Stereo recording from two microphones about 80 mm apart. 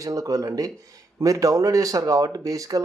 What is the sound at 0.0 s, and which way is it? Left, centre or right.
Speech, right.